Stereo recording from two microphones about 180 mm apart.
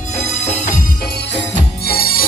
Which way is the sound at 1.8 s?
55° left (ahead or behind).